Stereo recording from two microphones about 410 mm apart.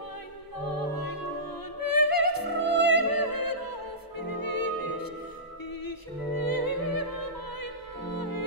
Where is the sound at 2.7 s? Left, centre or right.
Left.